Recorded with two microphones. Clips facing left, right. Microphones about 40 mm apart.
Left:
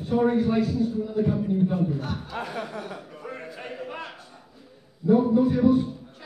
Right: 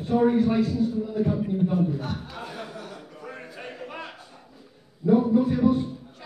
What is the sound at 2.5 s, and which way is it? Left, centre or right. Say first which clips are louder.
Chuckle: left 4 dB; left.